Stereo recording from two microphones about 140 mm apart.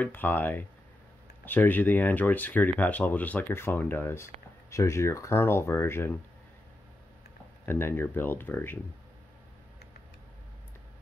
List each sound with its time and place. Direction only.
0.0 s speech: 15° left (ahead or behind)
7.6 s speech: 15° left (ahead or behind)